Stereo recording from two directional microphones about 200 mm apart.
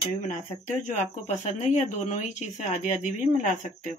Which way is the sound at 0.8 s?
35° left (ahead or behind).